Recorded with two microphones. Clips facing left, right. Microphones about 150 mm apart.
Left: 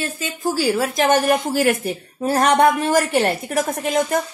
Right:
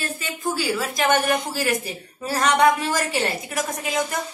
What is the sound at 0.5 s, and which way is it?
A woman's voice, 45° left (ahead or behind).